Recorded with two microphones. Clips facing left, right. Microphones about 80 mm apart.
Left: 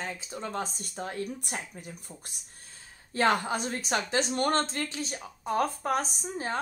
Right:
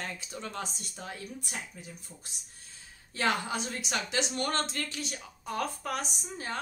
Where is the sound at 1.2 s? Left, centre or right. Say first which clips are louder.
Left 6 dB; left.